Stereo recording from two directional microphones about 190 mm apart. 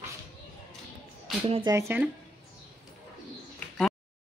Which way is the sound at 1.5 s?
20° right (ahead or behind).